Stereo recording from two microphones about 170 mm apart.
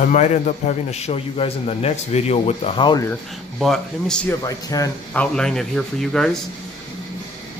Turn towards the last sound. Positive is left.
turn(degrees=0)  # may be behind; listen again after turning